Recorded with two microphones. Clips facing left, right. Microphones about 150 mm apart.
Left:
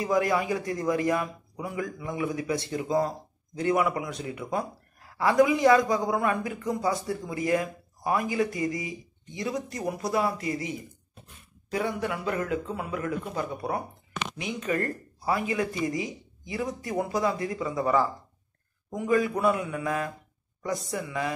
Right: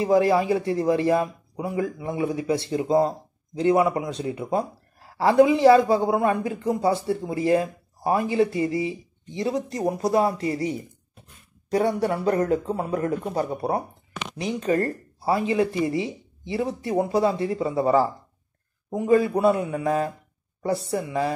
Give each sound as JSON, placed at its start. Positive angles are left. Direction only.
{"t": 0.0, "sound": "a man's voice", "side_deg": -30}